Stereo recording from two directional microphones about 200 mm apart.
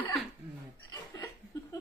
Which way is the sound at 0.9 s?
15° left (ahead or behind).